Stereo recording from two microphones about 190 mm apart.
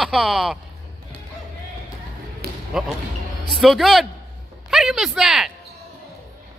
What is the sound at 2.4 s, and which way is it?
Basketball bounce, 55° right (ahead or behind).